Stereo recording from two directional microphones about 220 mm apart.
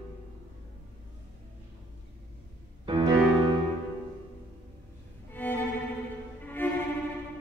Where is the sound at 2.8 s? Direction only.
20° right (ahead or behind).